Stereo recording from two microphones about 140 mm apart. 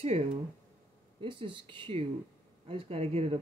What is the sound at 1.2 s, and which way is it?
Speech, 35° right (ahead or behind).